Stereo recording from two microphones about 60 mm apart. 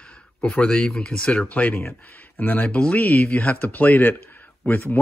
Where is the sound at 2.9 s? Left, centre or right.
Left.